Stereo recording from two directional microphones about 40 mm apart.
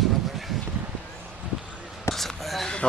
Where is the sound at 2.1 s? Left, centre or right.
Centre.